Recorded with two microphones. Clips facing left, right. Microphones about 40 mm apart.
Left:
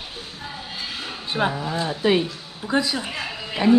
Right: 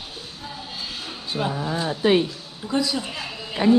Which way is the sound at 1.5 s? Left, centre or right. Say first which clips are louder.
Even; centre.